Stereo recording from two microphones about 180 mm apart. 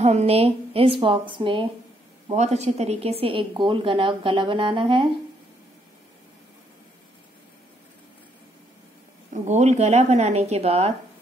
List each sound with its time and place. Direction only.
0.0 s a woman's voice: 35° right (ahead or behind)
2.2 s a woman's voice: 40° right (ahead or behind)
9.3 s a woman's voice: 40° right (ahead or behind)